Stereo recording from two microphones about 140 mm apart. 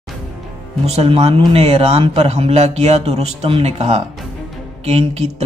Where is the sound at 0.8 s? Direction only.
45° right (ahead or behind).